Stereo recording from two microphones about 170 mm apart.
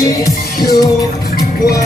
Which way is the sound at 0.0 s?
20° left (ahead or behind).